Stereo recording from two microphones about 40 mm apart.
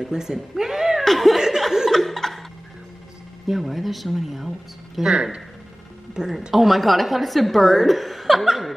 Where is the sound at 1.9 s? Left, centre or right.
Centre.